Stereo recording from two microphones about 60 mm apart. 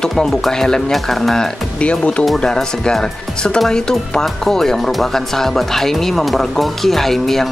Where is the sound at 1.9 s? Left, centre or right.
Left.